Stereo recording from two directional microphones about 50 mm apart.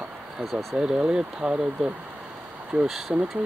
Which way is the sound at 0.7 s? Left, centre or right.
Centre.